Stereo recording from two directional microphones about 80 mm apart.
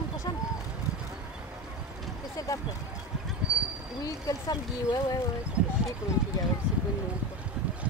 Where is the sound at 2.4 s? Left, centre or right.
Left.